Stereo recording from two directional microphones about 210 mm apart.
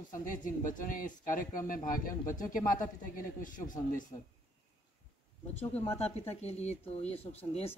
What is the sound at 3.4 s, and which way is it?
Speech, 40° left (ahead or behind).